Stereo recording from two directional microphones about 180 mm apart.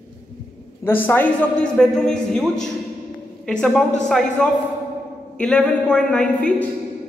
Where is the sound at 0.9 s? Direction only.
10° left (ahead or behind).